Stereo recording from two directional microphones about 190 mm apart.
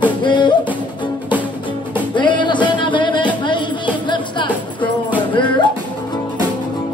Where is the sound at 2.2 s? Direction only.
25° left (ahead or behind).